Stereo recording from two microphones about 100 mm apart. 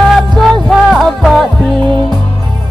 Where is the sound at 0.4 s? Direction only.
Centre (ahead or behind).